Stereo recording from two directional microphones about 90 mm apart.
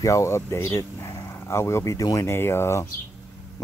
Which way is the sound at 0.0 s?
35° left (ahead or behind).